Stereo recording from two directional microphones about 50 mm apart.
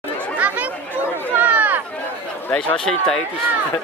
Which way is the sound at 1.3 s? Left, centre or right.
Right.